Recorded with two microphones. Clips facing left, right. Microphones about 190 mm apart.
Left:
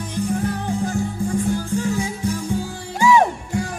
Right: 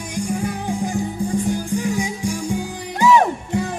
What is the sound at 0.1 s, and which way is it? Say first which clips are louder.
Music: left 1 dB; 15° right (ahead or behind).